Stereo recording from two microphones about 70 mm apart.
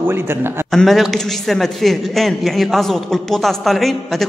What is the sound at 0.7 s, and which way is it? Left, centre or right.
A man's voice, centre.